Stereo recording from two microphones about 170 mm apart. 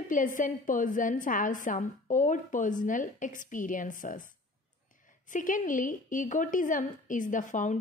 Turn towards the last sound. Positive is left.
turn(degrees=50)  # may be behind; listen again after turning